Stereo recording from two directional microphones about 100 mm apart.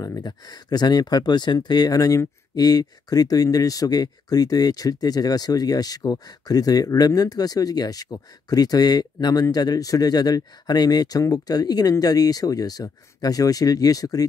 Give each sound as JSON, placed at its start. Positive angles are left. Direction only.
{"t": 0.0, "sound": "speech", "side_deg": 40}